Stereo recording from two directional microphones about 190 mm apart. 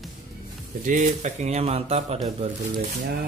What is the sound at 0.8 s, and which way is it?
Speech, 40° right (ahead or behind).